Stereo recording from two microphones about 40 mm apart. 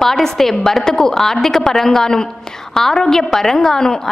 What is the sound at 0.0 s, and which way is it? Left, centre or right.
A woman's voice, centre.